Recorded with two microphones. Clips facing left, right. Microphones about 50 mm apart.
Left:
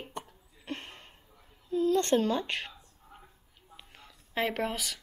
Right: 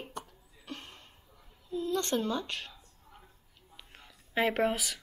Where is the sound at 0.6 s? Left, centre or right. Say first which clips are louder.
Left 5 dB; left.